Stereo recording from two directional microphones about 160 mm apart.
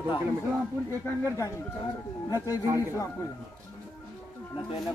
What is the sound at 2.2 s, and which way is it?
Speech, 25° left (ahead or behind).